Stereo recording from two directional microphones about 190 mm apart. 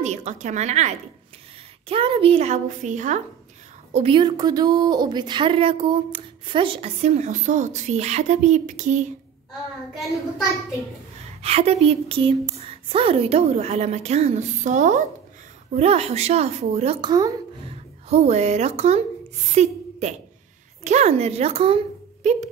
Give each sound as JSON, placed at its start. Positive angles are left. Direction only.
{"t": 0.0, "sound": "a woman's voice", "side_deg": -35}
{"t": 3.9, "sound": "a woman's voice", "side_deg": -30}
{"t": 11.4, "sound": "a woman's voice", "side_deg": -30}
{"t": 18.1, "sound": "a woman's voice", "side_deg": -35}